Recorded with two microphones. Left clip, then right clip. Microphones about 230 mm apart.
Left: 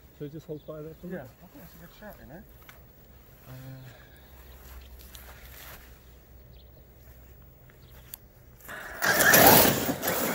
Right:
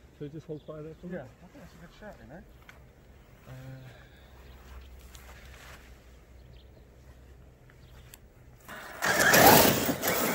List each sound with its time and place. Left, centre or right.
0.2 s speech: left
3.4 s a sound: left
4.6 s boat: left
8.6 s vehicle: left
9.6 s vehicle: centre